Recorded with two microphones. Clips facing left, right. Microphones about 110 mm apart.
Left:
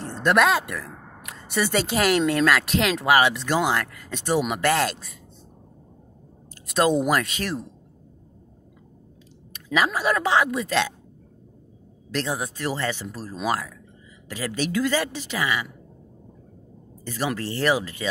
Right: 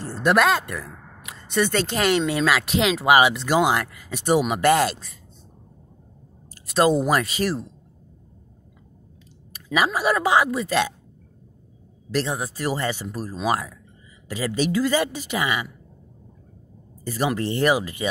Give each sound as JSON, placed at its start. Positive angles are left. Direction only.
{"t": 0.0, "sound": "speech", "side_deg": -5}
{"t": 3.1, "sound": "speech", "side_deg": -15}
{"t": 6.7, "sound": "speech", "side_deg": 0}
{"t": 9.5, "sound": "speech", "side_deg": -10}
{"t": 12.1, "sound": "speech", "side_deg": 0}
{"t": 12.6, "sound": "speech", "side_deg": -15}
{"t": 17.0, "sound": "speech", "side_deg": -10}
{"t": 17.4, "sound": "speech", "side_deg": -20}